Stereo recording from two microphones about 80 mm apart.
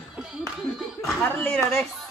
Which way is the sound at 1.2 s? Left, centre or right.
Left.